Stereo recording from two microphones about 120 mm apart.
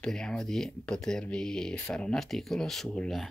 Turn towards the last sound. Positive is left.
turn(degrees=5)  # may be behind; listen again after turning